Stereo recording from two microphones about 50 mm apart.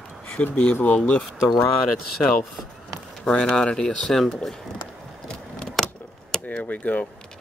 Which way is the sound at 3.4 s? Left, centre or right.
Centre.